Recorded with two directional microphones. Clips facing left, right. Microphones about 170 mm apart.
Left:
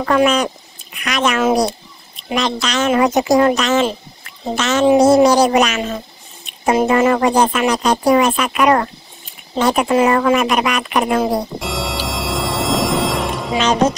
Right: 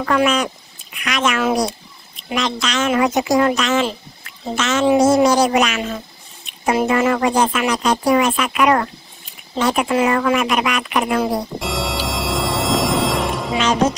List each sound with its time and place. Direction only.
0.0 s speech: 35° left (ahead or behind)
4.2 s a sound: 35° left (ahead or behind)
4.9 s speech: 35° left (ahead or behind)
11.6 s scary music: centre (ahead or behind)